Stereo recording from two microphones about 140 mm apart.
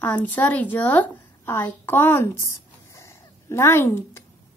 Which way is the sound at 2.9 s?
20° left (ahead or behind).